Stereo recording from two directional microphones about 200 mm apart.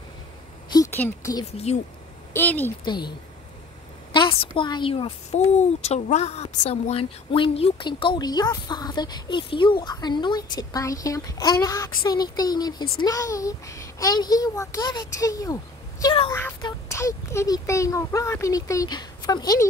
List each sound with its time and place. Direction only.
0.9 s a child's voice: 10° left (ahead or behind)
2.8 s a woman's voice: 20° left (ahead or behind)